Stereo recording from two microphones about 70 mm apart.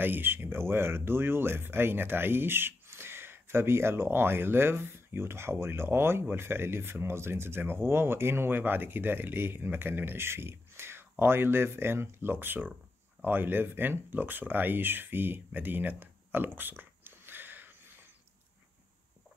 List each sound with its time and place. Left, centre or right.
0.0 s speech: right